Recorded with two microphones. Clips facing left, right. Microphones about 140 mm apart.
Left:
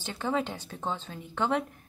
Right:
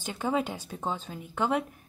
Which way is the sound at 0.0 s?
10° right (ahead or behind).